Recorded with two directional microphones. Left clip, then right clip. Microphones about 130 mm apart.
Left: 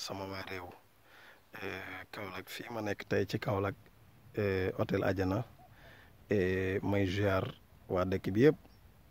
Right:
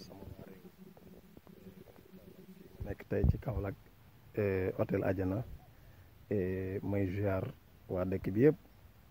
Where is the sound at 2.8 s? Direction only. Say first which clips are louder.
Left 2 dB; 20° left (ahead or behind).